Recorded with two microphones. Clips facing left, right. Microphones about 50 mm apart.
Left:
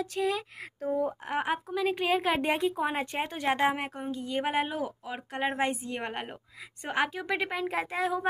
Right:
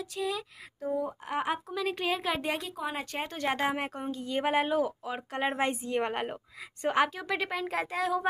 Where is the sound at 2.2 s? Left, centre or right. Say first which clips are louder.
Left 4 dB; left.